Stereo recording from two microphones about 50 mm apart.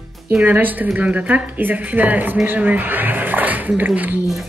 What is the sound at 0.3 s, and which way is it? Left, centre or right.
Speech, right.